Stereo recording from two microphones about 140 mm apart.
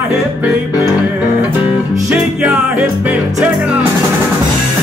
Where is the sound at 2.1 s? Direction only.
5° right (ahead or behind).